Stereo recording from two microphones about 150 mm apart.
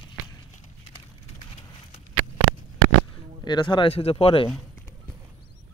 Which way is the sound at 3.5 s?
30° left (ahead or behind).